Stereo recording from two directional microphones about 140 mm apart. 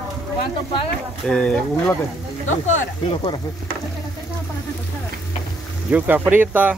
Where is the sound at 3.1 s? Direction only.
35° left (ahead or behind).